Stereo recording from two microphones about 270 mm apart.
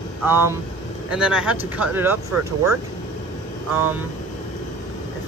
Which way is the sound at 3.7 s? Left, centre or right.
Centre.